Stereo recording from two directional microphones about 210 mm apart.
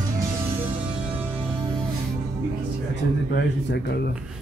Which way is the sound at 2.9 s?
55° left (ahead or behind).